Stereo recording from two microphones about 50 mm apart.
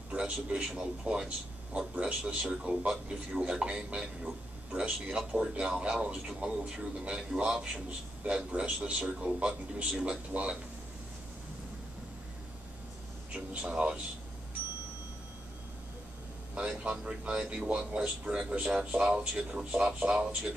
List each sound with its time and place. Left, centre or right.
0.1 s a man's voice: right
5.1 s a man's voice: centre
10.3 s a man's voice: right
13.3 s speech: right
16.5 s a man's voice: centre